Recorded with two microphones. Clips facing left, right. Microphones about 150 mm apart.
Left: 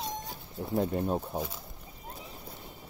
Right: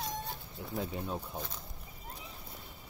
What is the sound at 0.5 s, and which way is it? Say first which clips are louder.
Speech: left 9 dB; 40° left (ahead or behind).